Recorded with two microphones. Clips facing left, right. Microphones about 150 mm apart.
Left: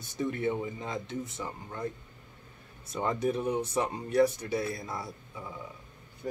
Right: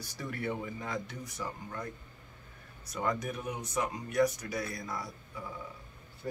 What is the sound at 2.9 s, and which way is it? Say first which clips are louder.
Speech: left 4 dB; 25° left (ahead or behind).